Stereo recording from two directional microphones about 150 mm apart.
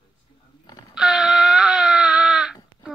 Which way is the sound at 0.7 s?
25° left (ahead or behind).